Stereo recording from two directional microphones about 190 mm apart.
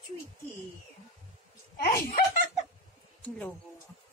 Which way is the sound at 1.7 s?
50° left (ahead or behind).